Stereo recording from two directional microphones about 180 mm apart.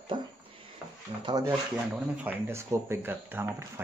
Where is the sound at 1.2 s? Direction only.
20° right (ahead or behind).